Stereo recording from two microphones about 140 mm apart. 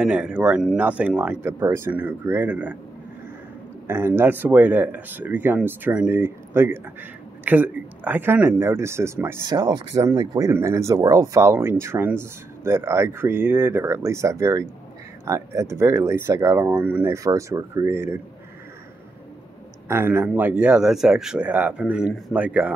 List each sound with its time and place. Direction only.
0.0 s speech: 5° right (ahead or behind)
3.8 s speech: 15° right (ahead or behind)
9.5 s speech: 30° right (ahead or behind)
19.9 s speech: 15° right (ahead or behind)